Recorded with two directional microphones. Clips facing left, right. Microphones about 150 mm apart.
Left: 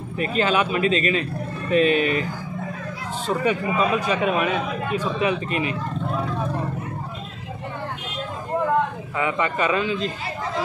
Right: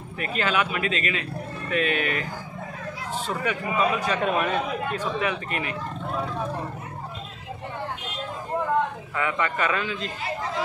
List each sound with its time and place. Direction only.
0.2 s speech: 25° left (ahead or behind)
3.3 s speech: 25° left (ahead or behind)
4.2 s speech: 5° left (ahead or behind)
5.2 s speech: 20° left (ahead or behind)
9.1 s speech: 20° left (ahead or behind)